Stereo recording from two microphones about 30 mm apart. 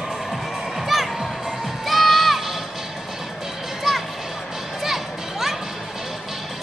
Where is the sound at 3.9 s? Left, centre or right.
Centre.